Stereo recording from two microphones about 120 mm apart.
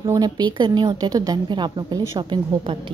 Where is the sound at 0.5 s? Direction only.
40° right (ahead or behind).